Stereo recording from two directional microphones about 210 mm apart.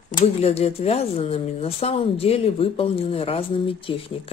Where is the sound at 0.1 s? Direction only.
30° left (ahead or behind).